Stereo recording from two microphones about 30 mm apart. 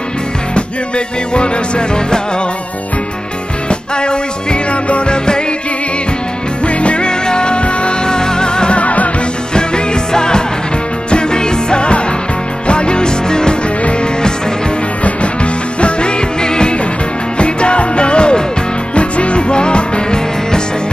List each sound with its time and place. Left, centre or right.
0.6 s music: left
3.9 s music: left
4.8 s music: left
5.1 s music: left
6.6 s music: left
7.1 s music: left
8.1 s music: left
8.7 s music: left
10.1 s music: left
15.8 s music: left
17.4 s music: left